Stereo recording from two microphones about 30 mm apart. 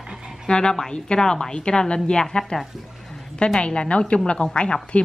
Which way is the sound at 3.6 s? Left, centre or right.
Left.